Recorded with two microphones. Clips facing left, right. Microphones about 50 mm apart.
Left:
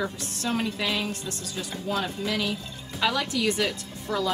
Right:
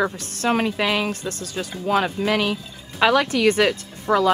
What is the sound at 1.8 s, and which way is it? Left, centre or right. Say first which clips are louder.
A woman's voice: right 9 dB; right.